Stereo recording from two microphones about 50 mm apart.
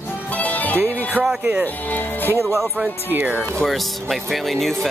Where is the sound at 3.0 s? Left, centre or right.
Right.